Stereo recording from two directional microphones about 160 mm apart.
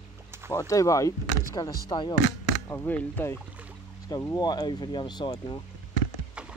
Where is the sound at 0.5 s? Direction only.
20° left (ahead or behind).